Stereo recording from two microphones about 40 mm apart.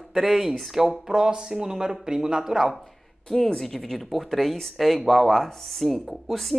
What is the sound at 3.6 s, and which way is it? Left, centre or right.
Speech, centre.